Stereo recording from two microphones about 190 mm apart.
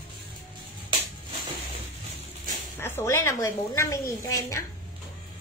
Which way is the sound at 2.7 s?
10° left (ahead or behind).